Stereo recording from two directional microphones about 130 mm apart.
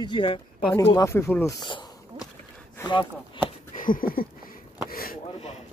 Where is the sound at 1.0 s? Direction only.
20° left (ahead or behind).